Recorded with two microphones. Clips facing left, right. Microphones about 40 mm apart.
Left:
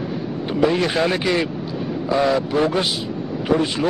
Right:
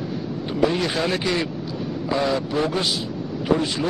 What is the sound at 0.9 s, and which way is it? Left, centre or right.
Speech, left.